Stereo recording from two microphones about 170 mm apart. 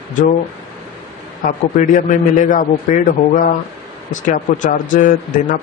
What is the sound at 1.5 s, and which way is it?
A man's voice, 50° left (ahead or behind).